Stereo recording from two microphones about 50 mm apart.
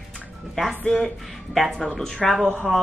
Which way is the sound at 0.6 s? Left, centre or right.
Centre.